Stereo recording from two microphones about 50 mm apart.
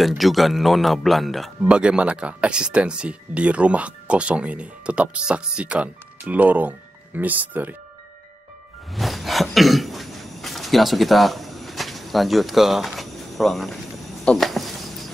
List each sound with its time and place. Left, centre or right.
0.2 s a man's voice: centre
1.6 s speech: centre; by 7.7 s right
8.9 s cough: centre
14.3 s a sound: centre